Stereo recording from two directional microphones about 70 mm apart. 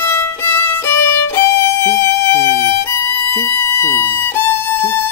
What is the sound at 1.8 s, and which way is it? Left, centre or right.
Violin, left.